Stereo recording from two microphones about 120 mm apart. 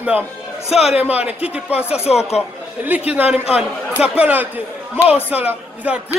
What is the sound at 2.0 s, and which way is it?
Speech, 60° left (ahead or behind).